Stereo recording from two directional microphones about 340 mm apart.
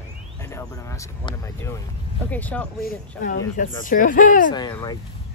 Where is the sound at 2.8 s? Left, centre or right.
Left.